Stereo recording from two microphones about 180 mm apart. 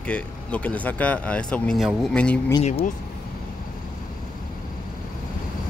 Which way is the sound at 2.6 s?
40° left (ahead or behind).